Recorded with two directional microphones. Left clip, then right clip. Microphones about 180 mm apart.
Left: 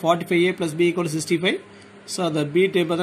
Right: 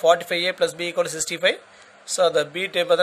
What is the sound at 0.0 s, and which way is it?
Speech, 55° right (ahead or behind).